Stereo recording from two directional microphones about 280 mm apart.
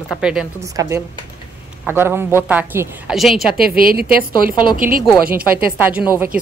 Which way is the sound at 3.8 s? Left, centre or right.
Right.